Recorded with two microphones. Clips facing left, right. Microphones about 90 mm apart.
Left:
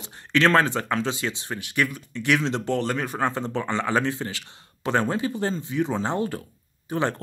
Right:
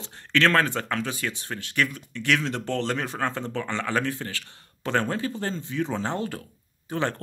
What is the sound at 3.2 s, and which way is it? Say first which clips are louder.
Speech: left 3 dB; 15° left (ahead or behind).